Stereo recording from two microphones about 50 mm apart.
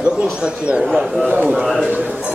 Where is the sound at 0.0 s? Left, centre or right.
Centre.